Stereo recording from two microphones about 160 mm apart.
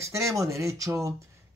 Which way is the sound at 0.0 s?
20° right (ahead or behind).